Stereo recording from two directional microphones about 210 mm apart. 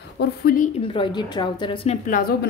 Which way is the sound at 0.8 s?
25° left (ahead or behind).